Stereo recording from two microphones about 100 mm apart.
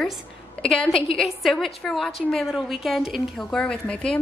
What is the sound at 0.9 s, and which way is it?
Speech, 70° left (ahead or behind).